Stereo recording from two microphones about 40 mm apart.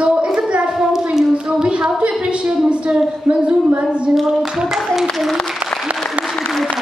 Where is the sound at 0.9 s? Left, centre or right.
Centre.